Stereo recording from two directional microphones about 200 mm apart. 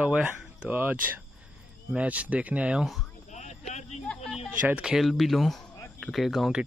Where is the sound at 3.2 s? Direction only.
35° left (ahead or behind).